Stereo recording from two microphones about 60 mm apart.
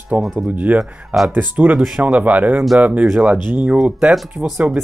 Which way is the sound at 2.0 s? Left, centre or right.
Right.